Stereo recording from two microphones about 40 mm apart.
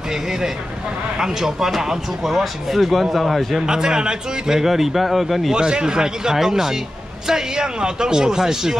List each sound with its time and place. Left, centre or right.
0.1 s a man's voice: centre
3.6 s a man's voice: centre
5.5 s a man's voice: centre